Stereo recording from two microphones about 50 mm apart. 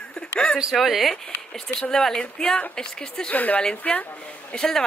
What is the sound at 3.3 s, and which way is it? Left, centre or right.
Speech, left.